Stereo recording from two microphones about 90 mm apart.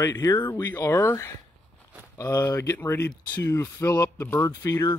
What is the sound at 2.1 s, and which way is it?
Speech, 40° left (ahead or behind).